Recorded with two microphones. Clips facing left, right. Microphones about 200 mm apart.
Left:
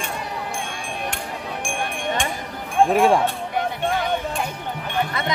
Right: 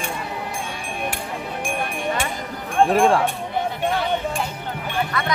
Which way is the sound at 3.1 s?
15° left (ahead or behind).